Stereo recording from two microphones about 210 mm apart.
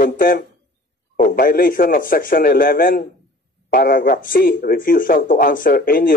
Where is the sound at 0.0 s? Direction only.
45° left (ahead or behind).